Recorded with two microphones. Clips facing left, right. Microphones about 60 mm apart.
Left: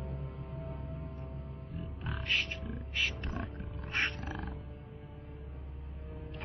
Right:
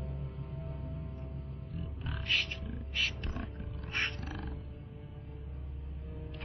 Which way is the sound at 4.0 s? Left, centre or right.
Centre.